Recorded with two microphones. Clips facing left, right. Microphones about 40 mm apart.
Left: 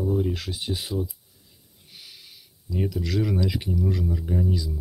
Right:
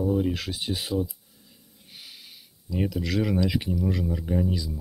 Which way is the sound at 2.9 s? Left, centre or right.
Right.